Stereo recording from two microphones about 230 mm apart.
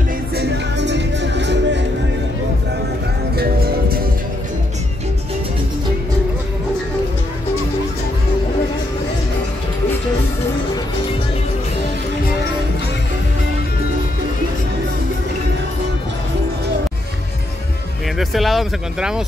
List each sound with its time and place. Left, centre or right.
0.4 s music: right
3.3 s music: right
18.1 s a sound: centre